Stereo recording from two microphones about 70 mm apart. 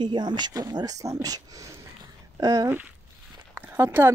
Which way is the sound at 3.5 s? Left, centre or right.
Right.